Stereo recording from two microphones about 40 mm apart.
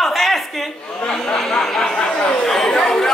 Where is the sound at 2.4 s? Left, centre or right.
Centre.